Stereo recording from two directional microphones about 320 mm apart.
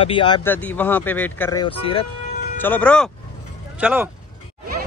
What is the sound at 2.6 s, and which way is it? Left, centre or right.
Speech, centre.